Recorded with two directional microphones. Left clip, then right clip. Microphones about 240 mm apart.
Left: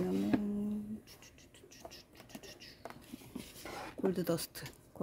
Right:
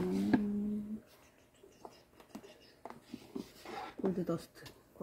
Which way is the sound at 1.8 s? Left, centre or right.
Left.